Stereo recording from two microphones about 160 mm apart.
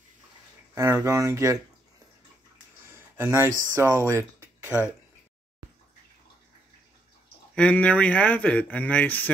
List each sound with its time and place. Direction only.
0.7 s speech: 20° right (ahead or behind)
2.9 s a sound: 15° right (ahead or behind)
3.7 s speech: 15° right (ahead or behind)
4.6 s speech: 5° right (ahead or behind)
7.5 s speech: 5° left (ahead or behind)